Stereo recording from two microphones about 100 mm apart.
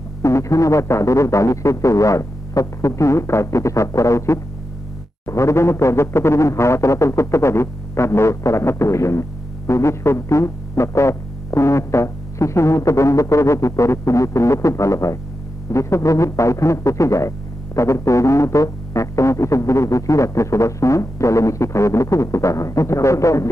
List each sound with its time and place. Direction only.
0.2 s music: 30° left (ahead or behind)
5.2 s a sound: 30° left (ahead or behind)
9.7 s music: 30° left (ahead or behind)